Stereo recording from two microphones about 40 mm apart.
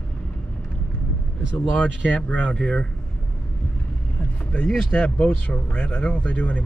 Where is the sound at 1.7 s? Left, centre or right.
Left.